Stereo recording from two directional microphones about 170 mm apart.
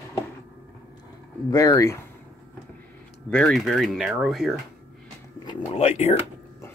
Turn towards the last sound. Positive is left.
turn(degrees=35)  # may be behind; listen again after turning